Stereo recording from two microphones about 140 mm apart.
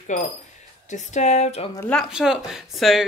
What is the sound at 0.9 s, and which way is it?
Speech, 55° left (ahead or behind).